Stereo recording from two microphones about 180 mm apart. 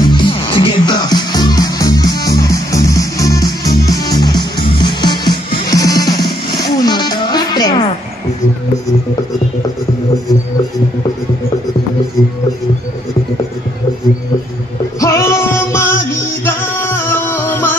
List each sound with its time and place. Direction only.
0.0 s music: 25° left (ahead or behind)
15.0 s music: 15° left (ahead or behind)